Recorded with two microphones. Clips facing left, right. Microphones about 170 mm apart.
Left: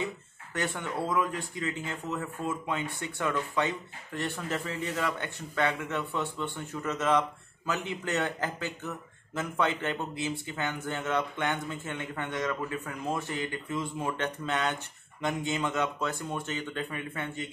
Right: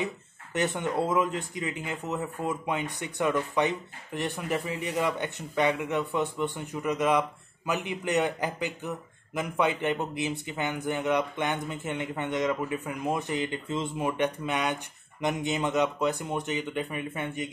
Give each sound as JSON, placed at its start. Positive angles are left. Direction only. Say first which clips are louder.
{"t": 0.0, "sound": "speech", "louder": "right 2 dB", "side_deg": -20}